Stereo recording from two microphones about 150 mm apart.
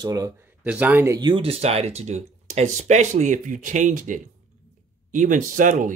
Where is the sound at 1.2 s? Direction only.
35° right (ahead or behind).